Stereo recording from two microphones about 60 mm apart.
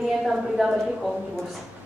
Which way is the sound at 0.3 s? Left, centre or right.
Centre.